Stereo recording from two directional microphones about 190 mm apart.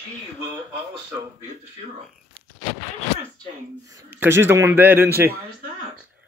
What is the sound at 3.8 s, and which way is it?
Speech, 15° right (ahead or behind).